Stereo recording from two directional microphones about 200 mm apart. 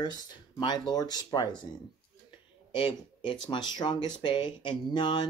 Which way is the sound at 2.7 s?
25° left (ahead or behind).